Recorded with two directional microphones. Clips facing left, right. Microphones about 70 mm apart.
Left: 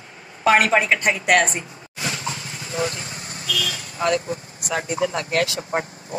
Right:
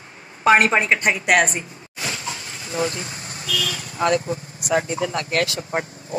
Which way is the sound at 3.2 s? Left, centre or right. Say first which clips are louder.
Even; right.